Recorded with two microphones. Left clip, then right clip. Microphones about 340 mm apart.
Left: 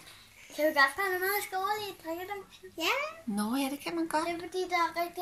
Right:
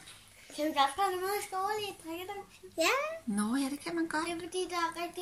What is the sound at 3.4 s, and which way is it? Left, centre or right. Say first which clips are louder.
Speech: left 3 dB; centre.